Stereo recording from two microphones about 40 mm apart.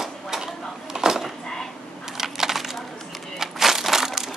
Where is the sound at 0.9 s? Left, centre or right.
Centre.